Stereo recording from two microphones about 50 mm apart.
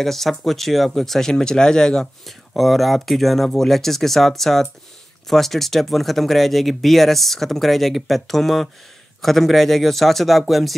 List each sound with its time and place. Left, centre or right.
0.0 s speech: centre
2.2 s speech: centre